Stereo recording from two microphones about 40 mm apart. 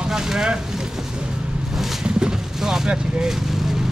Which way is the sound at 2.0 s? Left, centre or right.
Centre.